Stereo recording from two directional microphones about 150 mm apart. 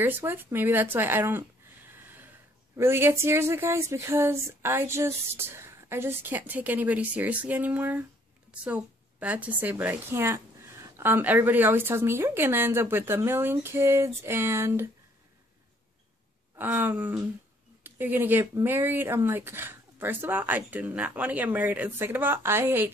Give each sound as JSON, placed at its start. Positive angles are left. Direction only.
{"t": 0.0, "sound": "speech", "side_deg": -15}
{"t": 1.9, "sound": "snort", "side_deg": -15}
{"t": 2.8, "sound": "speech", "side_deg": -15}
{"t": 16.5, "sound": "speech", "side_deg": -15}